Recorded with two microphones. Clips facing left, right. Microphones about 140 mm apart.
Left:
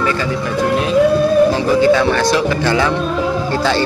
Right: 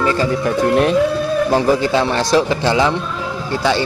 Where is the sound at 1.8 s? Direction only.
30° right (ahead or behind).